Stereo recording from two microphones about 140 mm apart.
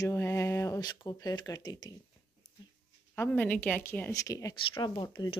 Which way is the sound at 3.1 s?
15° left (ahead or behind).